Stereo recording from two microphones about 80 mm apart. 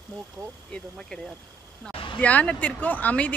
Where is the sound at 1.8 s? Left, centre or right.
Centre.